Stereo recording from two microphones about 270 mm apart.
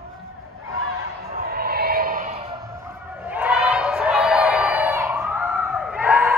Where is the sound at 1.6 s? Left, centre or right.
Right.